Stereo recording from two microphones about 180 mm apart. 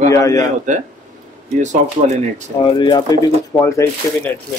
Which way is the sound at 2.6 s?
25° left (ahead or behind).